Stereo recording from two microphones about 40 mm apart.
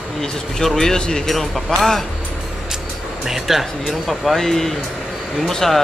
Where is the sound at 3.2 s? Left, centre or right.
Centre.